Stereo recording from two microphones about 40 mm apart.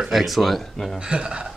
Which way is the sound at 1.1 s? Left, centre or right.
Right.